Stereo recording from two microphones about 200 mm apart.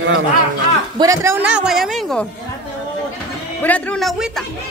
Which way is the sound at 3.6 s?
5° left (ahead or behind).